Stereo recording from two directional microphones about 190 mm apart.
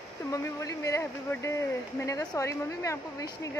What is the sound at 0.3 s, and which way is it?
Speech, 15° left (ahead or behind).